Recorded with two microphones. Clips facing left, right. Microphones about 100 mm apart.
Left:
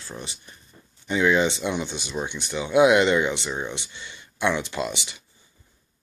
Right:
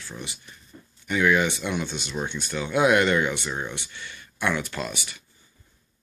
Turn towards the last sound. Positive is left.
turn(degrees=20)  # may be behind; listen again after turning